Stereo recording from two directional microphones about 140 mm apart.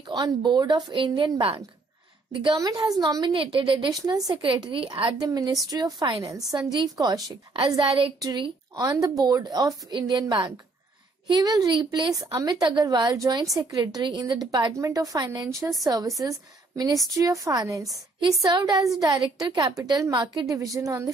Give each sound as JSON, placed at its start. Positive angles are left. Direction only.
{"t": 0.0, "sound": "speech", "side_deg": -30}
{"t": 2.5, "sound": "a woman's voice", "side_deg": -25}
{"t": 3.9, "sound": "a woman's voice", "side_deg": -25}
{"t": 5.2, "sound": "a woman's voice", "side_deg": -25}